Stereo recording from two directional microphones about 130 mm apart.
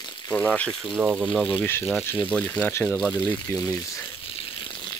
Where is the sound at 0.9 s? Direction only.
10° right (ahead or behind).